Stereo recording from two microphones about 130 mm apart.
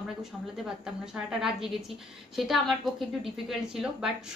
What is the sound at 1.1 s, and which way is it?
A woman's voice, 5° right (ahead or behind).